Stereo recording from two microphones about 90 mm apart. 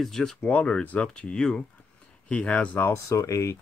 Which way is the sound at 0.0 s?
5° left (ahead or behind).